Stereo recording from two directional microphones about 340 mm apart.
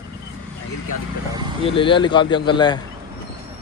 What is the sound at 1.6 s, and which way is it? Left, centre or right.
Speech, centre.